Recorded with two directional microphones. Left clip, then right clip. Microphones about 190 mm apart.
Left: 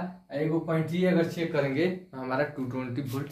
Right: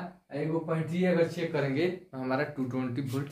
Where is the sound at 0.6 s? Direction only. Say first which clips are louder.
Left 2 dB; 10° right (ahead or behind).